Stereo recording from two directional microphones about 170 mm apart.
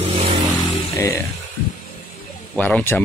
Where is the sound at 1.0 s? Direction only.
15° left (ahead or behind).